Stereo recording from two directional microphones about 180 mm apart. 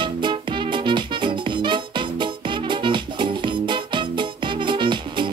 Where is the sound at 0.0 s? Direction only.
25° right (ahead or behind).